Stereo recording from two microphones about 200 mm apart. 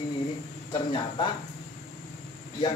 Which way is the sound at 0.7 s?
25° left (ahead or behind).